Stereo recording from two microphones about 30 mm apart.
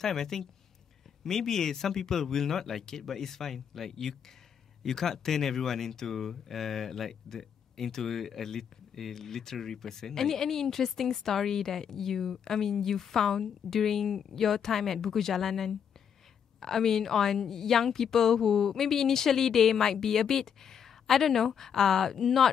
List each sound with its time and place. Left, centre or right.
0.0 s speech: centre